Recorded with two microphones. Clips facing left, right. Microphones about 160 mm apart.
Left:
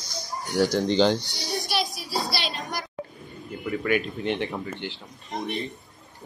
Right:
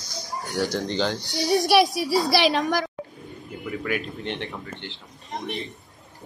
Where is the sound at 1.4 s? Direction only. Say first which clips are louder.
Right 12 dB; 80° right.